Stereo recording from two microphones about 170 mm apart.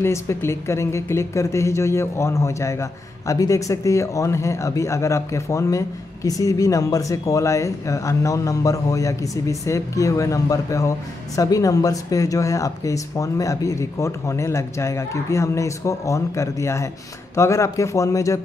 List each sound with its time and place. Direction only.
0.0 s speech: 15° left (ahead or behind)